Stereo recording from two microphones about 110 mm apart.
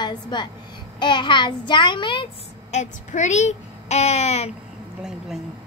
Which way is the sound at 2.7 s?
90° left.